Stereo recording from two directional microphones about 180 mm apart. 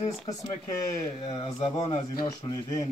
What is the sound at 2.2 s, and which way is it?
Speech, 25° left (ahead or behind).